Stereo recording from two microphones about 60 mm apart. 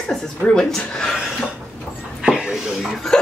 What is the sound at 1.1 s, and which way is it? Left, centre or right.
A woman's voice, centre.